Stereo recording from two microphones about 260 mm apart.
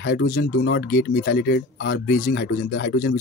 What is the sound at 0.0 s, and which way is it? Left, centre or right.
Speech, left.